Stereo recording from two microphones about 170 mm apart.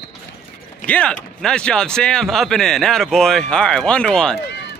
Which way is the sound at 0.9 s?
5° left (ahead or behind).